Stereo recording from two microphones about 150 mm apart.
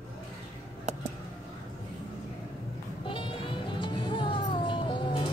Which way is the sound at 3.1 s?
35° left (ahead or behind).